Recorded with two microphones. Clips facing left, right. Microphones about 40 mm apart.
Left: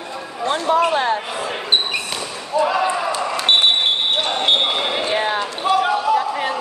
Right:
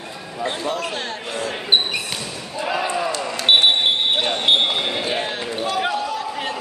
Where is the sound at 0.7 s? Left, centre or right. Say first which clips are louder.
Left 9 dB; left.